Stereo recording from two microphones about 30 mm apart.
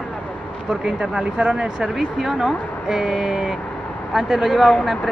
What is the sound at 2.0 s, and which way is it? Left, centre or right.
Speech, centre.